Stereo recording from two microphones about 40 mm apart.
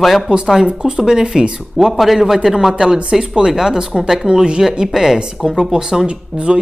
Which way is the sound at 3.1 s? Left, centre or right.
Centre.